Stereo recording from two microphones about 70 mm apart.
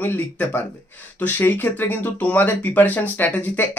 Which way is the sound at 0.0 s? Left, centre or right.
Left.